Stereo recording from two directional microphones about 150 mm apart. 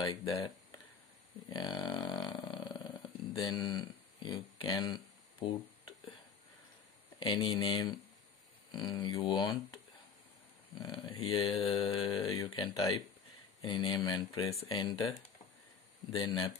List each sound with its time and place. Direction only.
0.0 s speech: 25° left (ahead or behind)
1.5 s a sound: 25° left (ahead or behind)
3.4 s speech: 30° left (ahead or behind)
7.2 s speech: 30° left (ahead or behind)
12.0 s speech: 35° left (ahead or behind)